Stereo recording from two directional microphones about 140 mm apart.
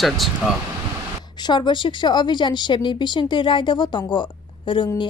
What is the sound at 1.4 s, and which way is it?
A woman's voice, 30° left (ahead or behind).